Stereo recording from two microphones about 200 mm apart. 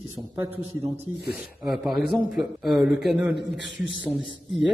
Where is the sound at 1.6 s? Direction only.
Centre (ahead or behind).